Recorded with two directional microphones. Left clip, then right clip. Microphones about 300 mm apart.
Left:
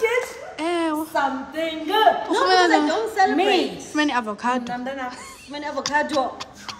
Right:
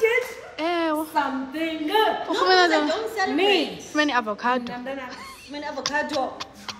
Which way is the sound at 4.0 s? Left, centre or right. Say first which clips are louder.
Even; centre.